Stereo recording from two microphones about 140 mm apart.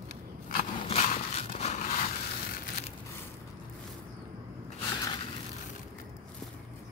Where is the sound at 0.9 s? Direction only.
50° left (ahead or behind).